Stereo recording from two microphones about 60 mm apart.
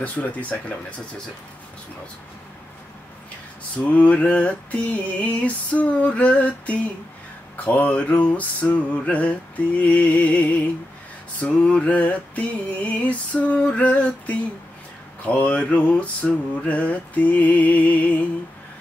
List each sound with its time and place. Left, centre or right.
0.0 s music: left
3.7 s music: left